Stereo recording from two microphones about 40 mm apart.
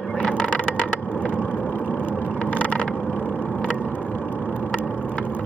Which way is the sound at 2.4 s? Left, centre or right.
Left.